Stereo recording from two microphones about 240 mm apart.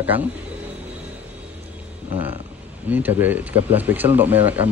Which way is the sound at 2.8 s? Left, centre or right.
Centre.